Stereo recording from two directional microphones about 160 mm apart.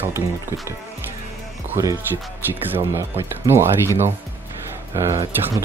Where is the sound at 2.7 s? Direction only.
15° right (ahead or behind).